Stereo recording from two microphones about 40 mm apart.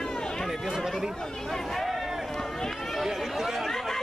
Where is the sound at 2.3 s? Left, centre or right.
Centre.